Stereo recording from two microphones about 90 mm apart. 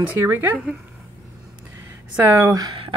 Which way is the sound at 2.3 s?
20° right (ahead or behind).